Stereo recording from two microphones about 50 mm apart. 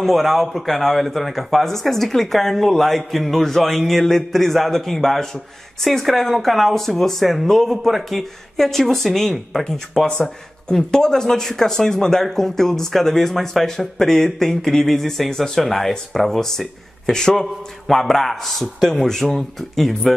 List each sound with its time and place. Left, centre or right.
0.0 s speech: centre
9.7 s speech: centre